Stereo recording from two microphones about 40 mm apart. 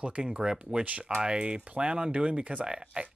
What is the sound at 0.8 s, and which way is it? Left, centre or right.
Speech, right.